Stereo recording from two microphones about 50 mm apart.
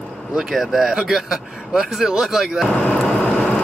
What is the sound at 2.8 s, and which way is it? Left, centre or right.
Vehicle, left.